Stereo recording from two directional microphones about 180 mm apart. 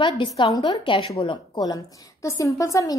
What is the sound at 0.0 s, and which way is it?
A woman's voice, 25° left (ahead or behind).